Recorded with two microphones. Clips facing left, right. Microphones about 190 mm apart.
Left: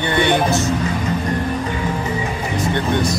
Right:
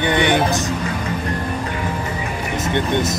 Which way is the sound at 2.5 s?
20° right (ahead or behind).